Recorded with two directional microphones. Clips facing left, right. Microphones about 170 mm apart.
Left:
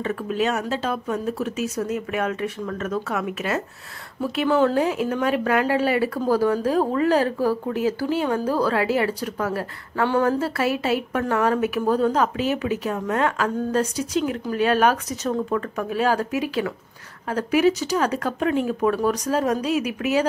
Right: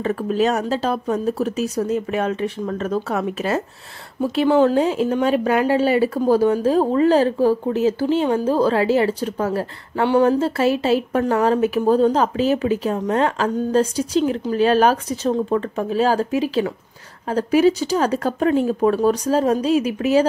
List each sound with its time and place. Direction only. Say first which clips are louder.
0.0 s speech: right 4 dB; 35° right (ahead or behind)